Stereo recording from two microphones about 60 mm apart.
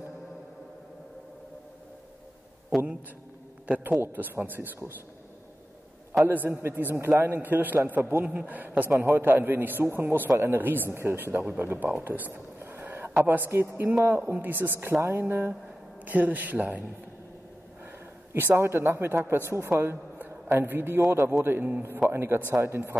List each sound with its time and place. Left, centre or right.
2.7 s a man's voice: centre
3.6 s a man's voice: right
6.2 s a man's voice: right
11.6 s a sound: right
13.2 s a man's voice: right
16.1 s a man's voice: right
18.3 s a man's voice: right
20.2 s a sound: right
21.3 s a man's voice: right
22.1 s a man's voice: right